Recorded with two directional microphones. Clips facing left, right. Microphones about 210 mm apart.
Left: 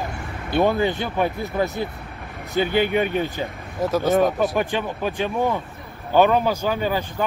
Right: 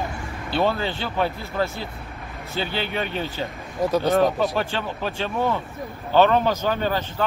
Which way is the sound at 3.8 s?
Centre (ahead or behind).